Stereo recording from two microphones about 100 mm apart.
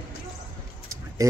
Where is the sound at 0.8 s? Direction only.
35° right (ahead or behind).